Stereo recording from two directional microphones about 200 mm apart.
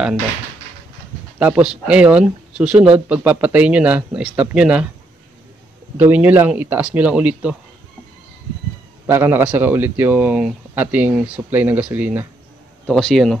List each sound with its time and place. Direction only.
1.4 s speech: 5° right (ahead or behind)
5.9 s a man's voice: 10° right (ahead or behind)
9.0 s a man's voice: 10° right (ahead or behind)
12.8 s speech: centre (ahead or behind)